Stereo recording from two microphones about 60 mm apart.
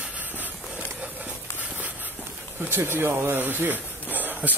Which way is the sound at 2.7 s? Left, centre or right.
Right.